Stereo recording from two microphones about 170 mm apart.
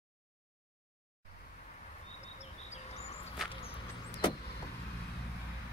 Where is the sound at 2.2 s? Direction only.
40° left (ahead or behind).